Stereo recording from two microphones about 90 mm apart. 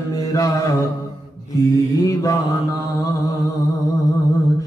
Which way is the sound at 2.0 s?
40° left (ahead or behind).